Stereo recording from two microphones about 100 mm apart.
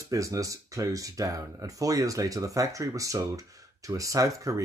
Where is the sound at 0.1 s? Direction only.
35° right (ahead or behind).